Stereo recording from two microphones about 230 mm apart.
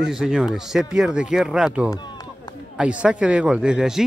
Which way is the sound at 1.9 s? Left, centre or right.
Centre.